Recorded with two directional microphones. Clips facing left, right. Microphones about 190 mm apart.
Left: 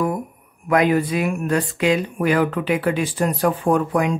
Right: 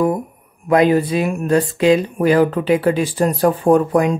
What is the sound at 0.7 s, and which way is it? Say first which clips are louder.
Speech: right 4 dB; 30° right (ahead or behind).